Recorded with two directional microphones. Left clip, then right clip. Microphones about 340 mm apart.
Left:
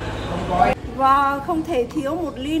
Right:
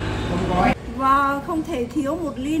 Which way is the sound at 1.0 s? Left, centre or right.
Centre.